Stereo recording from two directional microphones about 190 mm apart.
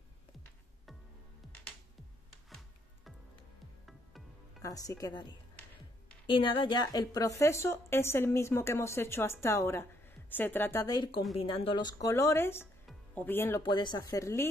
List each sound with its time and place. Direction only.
4.6 s a woman's voice: 20° left (ahead or behind)